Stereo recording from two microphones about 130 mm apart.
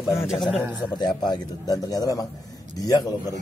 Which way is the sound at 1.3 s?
30° left (ahead or behind).